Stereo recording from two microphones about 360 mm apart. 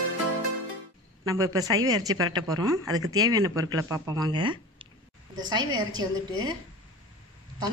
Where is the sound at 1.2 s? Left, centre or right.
Centre.